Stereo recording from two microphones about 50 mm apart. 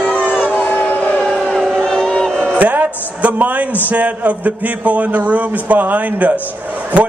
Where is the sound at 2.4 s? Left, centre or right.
Right.